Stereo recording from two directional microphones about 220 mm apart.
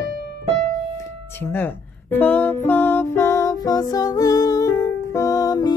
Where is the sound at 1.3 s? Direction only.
10° left (ahead or behind).